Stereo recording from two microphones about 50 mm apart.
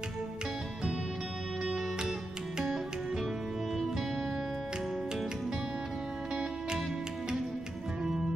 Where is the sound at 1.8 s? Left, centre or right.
Centre.